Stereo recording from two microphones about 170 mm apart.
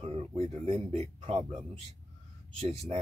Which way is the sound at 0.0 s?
35° right (ahead or behind).